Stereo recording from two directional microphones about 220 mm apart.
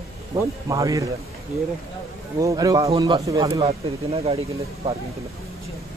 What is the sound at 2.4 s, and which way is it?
Speech, 15° right (ahead or behind).